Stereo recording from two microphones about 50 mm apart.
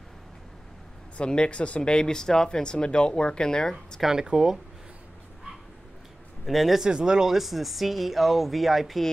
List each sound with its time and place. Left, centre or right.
1.1 s speech: centre
4.0 s speech: centre
6.4 s speech: centre
6.8 s speech: centre